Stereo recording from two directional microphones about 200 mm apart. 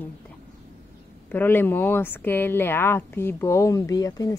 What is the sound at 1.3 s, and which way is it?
A woman's voice, 10° left (ahead or behind).